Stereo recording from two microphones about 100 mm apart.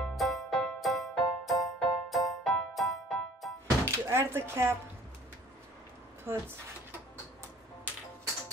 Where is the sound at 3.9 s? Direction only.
25° right (ahead or behind).